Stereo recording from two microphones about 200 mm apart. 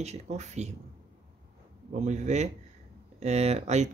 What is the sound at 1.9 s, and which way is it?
Speech, 35° right (ahead or behind).